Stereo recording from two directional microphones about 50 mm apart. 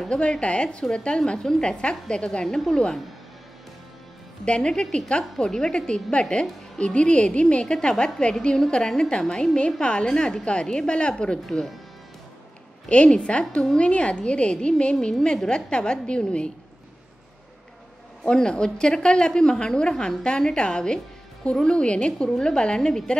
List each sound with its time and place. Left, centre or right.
0.1 s a woman's voice: left
4.5 s a woman's voice: centre
12.8 s a woman's voice: left
18.2 s a woman's voice: centre